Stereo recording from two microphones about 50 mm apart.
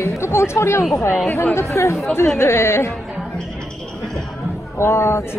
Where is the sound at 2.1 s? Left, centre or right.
Left.